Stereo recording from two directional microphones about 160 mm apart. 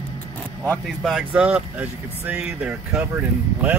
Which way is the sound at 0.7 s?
Centre (ahead or behind).